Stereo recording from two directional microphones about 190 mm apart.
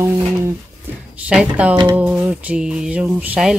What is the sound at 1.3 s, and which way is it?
Speech, 5° right (ahead or behind).